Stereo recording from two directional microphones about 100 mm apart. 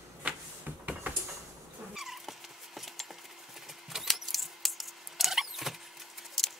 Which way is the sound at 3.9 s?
Centre (ahead or behind).